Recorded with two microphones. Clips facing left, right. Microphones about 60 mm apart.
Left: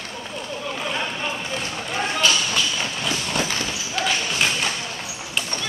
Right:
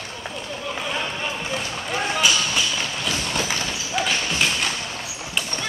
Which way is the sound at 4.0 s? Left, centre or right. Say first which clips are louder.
Even; centre.